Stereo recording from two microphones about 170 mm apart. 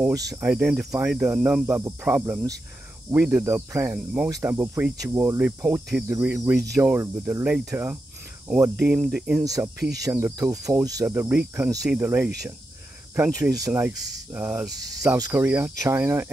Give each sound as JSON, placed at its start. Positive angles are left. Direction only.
{"t": 0.4, "sound": "speech", "side_deg": -5}
{"t": 9.4, "sound": "speech", "side_deg": -20}
{"t": 14.3, "sound": "speech", "side_deg": -10}
{"t": 14.8, "sound": "speech", "side_deg": -20}